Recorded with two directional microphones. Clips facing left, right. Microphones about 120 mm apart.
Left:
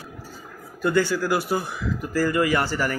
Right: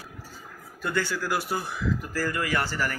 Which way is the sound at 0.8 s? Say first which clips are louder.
Left 7 dB; 5° left (ahead or behind).